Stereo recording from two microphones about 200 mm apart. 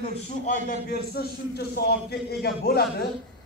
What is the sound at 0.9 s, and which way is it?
A man's voice, 50° left (ahead or behind).